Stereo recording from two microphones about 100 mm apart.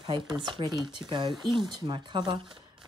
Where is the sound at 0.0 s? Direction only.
50° right (ahead or behind).